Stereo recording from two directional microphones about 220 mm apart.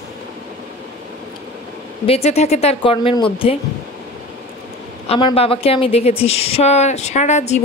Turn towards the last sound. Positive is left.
turn(degrees=30)  # may be behind; listen again after turning